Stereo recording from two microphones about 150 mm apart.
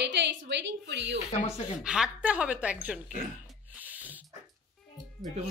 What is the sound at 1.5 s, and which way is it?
Speech, 5° right (ahead or behind).